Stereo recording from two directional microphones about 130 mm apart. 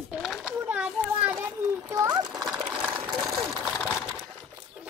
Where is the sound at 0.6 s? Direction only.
10° right (ahead or behind).